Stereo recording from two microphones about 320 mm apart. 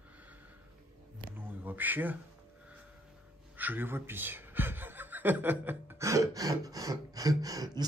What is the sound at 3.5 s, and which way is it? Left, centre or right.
Speech, centre.